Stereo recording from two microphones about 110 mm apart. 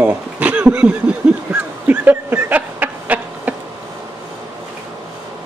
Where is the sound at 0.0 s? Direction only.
15° right (ahead or behind).